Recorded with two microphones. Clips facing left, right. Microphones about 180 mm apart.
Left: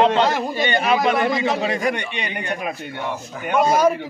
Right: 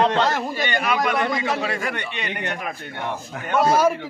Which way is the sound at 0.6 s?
25° left (ahead or behind).